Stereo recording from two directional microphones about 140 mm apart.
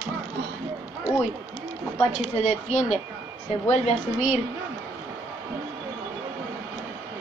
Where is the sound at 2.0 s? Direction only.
50° left (ahead or behind).